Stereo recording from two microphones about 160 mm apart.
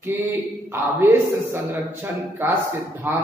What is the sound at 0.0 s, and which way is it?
A man's voice, 15° right (ahead or behind).